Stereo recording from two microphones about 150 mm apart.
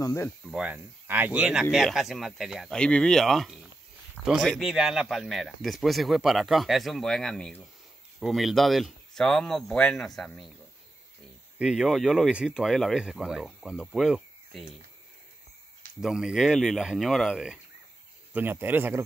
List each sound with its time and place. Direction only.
0.0 s speech: 20° left (ahead or behind)
0.5 s speech: 10° right (ahead or behind)
11.5 s speech: 5° right (ahead or behind)
16.0 s speech: 5° right (ahead or behind)
18.3 s speech: 15° right (ahead or behind)